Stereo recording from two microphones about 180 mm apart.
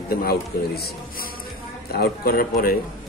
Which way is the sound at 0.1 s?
55° left (ahead or behind).